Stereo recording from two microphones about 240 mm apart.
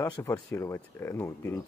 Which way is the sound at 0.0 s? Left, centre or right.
Centre.